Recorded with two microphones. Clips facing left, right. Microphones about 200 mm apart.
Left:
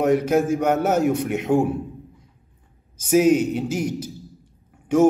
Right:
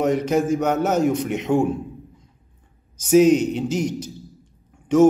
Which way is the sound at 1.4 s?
Centre (ahead or behind).